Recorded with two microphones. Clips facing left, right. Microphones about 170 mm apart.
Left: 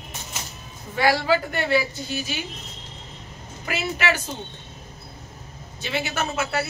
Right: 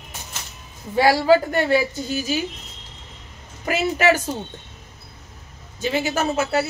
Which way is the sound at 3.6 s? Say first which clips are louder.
Right 7 dB; 40° right (ahead or behind).